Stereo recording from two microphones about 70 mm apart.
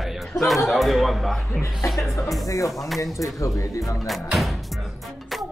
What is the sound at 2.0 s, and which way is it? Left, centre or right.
Speech, left.